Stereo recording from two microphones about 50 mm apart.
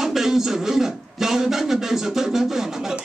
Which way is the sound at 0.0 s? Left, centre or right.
Centre.